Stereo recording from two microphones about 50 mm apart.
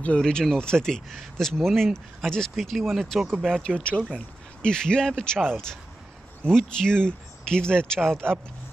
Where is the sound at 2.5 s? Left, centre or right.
Centre.